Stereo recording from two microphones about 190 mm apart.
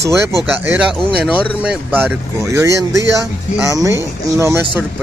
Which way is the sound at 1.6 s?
5° right (ahead or behind).